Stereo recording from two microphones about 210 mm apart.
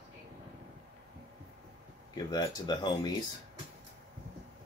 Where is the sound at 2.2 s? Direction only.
20° left (ahead or behind).